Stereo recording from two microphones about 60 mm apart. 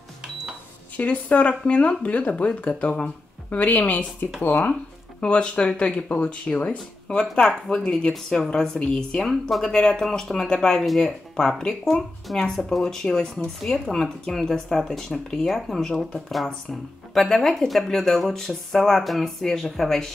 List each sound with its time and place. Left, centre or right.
0.9 s speech: left
5.2 s speech: centre
9.7 s speech: centre